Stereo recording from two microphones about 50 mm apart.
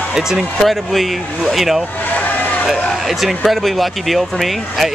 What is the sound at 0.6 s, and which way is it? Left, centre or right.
Speech, centre.